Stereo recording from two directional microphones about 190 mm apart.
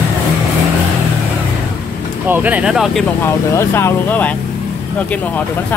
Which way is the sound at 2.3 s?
10° right (ahead or behind).